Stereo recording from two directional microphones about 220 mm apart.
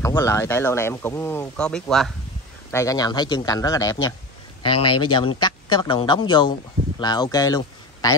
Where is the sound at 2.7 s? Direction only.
15° left (ahead or behind).